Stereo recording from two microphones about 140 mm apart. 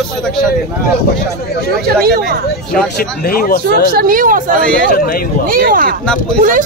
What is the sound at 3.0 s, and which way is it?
Speech, 90° left.